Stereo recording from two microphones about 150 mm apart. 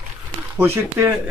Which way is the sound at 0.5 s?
15° right (ahead or behind).